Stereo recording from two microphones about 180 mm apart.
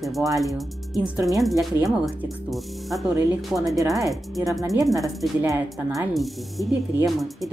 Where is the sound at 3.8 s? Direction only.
20° right (ahead or behind).